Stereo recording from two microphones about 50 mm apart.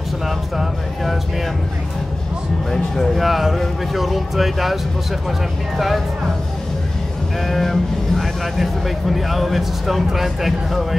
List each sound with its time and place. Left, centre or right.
2.7 s speech: centre
5.8 s speech: centre
7.4 s speech: centre